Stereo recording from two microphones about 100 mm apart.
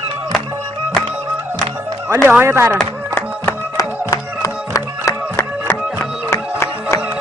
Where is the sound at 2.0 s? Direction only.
25° right (ahead or behind).